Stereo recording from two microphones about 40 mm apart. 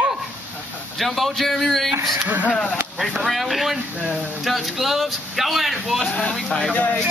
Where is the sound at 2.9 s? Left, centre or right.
Centre.